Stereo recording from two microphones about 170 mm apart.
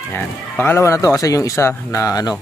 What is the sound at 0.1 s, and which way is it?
Speech, 15° left (ahead or behind).